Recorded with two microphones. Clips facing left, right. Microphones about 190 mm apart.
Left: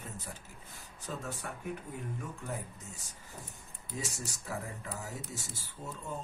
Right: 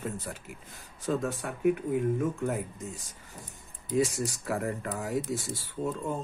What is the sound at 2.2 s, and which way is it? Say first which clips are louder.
Speech: right 11 dB; 90° right.